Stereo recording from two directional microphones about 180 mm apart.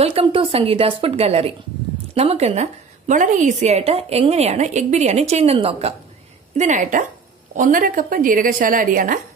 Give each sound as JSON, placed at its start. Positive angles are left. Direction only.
{"t": 0.0, "sound": "a woman's voice", "side_deg": -30}